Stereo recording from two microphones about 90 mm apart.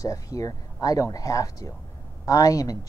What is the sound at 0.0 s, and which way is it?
A man's voice, 40° left (ahead or behind).